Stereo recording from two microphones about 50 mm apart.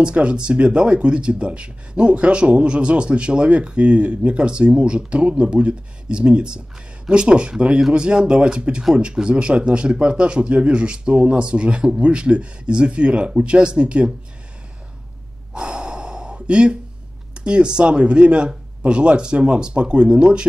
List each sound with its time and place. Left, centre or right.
0.0 s speech: right
15.5 s gasp: centre
17.3 s speech: centre